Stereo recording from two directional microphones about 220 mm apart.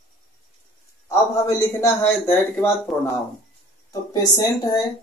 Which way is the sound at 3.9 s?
15° left (ahead or behind).